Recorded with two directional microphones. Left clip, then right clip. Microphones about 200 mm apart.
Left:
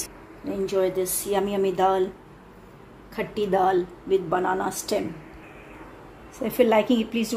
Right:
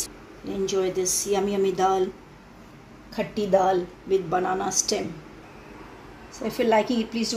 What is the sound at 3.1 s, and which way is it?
Speech, 5° left (ahead or behind).